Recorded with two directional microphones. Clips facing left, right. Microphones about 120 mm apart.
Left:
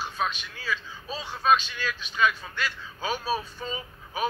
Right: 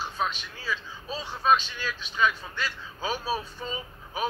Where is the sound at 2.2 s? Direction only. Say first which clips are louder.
Left 1 dB; 20° right (ahead or behind).